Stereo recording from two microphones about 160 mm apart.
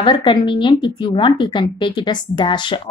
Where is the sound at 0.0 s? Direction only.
30° left (ahead or behind).